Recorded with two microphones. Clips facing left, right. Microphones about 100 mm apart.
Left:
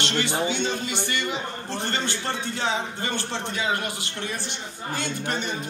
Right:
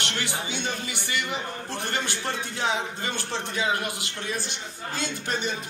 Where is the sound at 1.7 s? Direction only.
15° right (ahead or behind).